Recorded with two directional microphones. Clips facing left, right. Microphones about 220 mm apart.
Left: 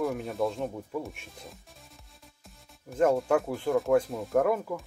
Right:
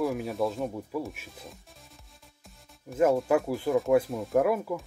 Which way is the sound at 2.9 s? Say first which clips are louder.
Right 1 dB; 5° right (ahead or behind).